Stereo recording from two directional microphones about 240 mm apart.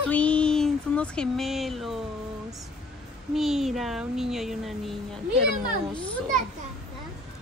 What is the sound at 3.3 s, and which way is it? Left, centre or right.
A child's voice, centre.